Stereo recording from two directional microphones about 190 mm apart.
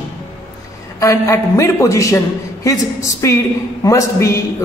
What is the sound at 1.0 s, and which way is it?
A woman's voice, 15° left (ahead or behind).